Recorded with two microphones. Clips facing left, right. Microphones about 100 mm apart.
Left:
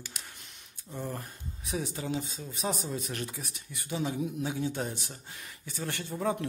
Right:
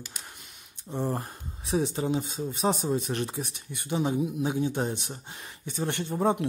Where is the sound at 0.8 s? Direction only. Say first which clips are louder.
Right 7 dB; 30° right (ahead or behind).